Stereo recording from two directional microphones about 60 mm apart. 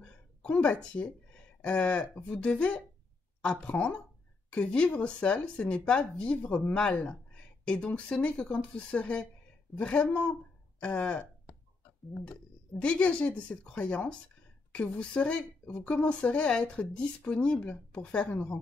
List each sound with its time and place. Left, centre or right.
0.0 s a sound: centre
1.6 s speech: centre
12.3 s speech: centre